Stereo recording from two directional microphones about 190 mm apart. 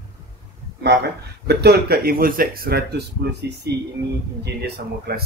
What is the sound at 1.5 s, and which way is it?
A man's voice, 55° right (ahead or behind).